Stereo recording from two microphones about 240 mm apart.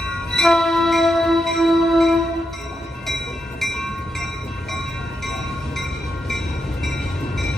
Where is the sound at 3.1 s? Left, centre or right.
Centre.